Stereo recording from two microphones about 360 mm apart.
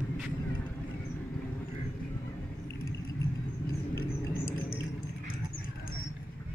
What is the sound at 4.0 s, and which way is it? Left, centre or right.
Rodents, left.